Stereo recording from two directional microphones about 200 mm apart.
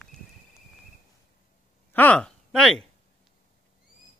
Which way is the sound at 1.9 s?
5° left (ahead or behind).